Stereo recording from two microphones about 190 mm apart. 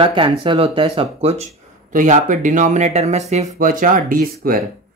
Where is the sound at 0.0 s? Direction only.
25° right (ahead or behind).